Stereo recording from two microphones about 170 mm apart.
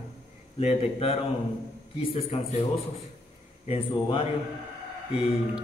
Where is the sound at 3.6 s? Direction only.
30° left (ahead or behind).